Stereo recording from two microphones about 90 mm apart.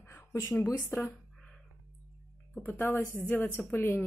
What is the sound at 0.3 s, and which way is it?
Speech, 35° left (ahead or behind).